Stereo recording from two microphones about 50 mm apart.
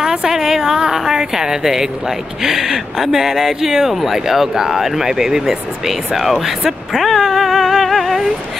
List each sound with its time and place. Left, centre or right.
0.0 s a woman's voice: centre